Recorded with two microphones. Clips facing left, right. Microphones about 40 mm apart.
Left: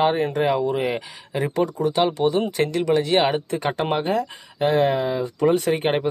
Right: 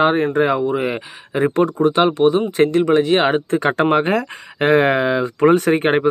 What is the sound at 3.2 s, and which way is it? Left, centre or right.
Speech, right.